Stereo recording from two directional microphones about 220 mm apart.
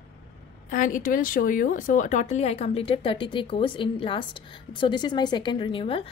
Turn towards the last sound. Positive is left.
turn(degrees=25)  # may be behind; listen again after turning